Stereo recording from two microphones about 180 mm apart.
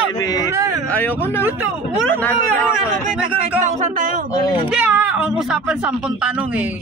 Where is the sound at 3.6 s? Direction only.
40° right (ahead or behind).